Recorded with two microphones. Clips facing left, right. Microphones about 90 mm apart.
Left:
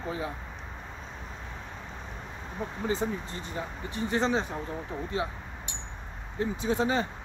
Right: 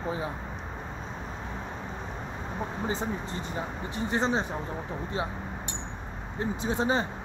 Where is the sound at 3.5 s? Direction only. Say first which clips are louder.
Left 1 dB; 20° right (ahead or behind).